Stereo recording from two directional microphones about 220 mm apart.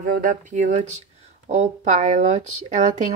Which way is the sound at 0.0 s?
40° right (ahead or behind).